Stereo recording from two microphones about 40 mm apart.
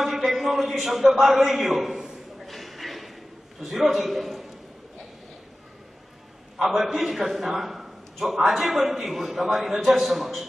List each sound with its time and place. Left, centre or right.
0.0 s a man's voice: centre
2.4 s a sound: centre
3.6 s a man's voice: centre
6.6 s a man's voice: centre